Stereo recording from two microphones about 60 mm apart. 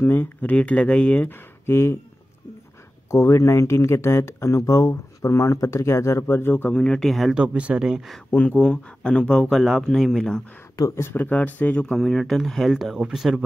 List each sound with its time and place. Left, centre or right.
0.0 s speech: left
0.6 s speech: centre
1.3 s speech: left
3.1 s speech: left
6.2 s speech: left
6.7 s speech: centre
7.3 s speech: right
8.5 s speech: centre
9.5 s speech: centre
11.1 s speech: left
11.9 s speech: centre